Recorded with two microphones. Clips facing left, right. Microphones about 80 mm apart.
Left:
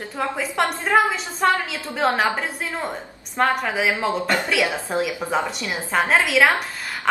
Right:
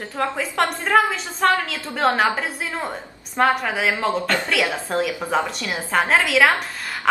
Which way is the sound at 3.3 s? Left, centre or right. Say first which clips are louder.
Right 1 dB; centre.